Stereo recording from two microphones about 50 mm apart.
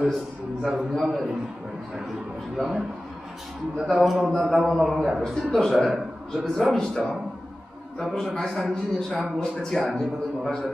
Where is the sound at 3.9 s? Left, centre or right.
Centre.